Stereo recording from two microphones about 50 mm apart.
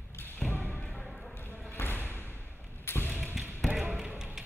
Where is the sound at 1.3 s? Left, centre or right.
Left.